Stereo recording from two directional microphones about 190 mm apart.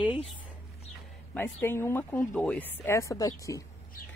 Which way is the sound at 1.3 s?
10° left (ahead or behind).